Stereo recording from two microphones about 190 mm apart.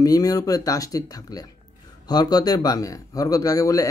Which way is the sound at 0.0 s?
20° left (ahead or behind).